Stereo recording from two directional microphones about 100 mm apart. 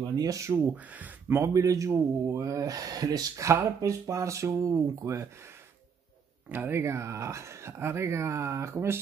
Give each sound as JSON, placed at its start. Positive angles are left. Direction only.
{"t": 0.0, "sound": "speech", "side_deg": -40}
{"t": 0.9, "sound": "speech", "side_deg": -15}
{"t": 1.4, "sound": "speech", "side_deg": -30}
{"t": 6.5, "sound": "speech", "side_deg": -20}